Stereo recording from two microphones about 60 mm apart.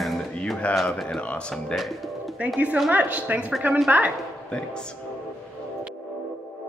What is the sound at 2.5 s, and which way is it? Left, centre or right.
A woman's voice, right.